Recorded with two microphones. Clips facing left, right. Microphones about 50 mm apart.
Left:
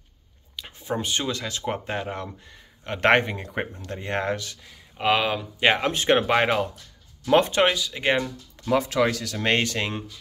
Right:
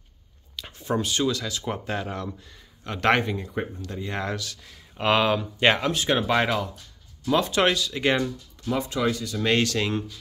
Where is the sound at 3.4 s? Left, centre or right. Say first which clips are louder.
Even; left.